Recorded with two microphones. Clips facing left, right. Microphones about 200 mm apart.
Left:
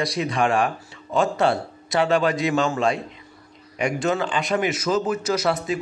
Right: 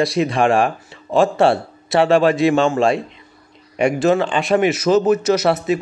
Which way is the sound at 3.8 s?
70° right (ahead or behind).